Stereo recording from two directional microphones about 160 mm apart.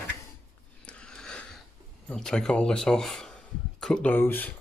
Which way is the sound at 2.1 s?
5° left (ahead or behind).